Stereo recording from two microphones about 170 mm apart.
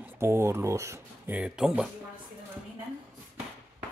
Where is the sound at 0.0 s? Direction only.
15° right (ahead or behind).